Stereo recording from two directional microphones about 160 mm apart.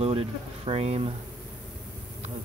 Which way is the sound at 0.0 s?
35° right (ahead or behind).